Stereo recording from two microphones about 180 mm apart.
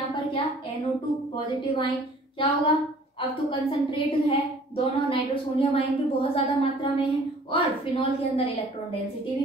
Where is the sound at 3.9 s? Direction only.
30° left (ahead or behind).